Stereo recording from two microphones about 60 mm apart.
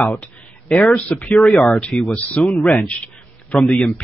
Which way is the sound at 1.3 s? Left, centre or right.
Centre.